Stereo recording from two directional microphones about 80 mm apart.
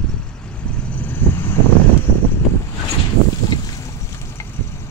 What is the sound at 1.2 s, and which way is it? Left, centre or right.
Vehicle, left.